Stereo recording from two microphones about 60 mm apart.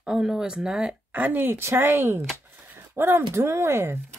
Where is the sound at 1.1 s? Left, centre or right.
Right.